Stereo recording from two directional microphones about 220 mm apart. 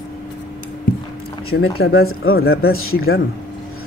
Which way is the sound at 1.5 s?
45° left (ahead or behind).